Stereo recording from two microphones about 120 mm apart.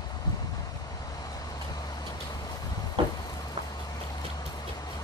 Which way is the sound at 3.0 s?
50° right (ahead or behind).